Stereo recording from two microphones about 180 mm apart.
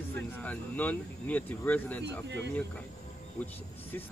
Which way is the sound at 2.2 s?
75° right (ahead or behind).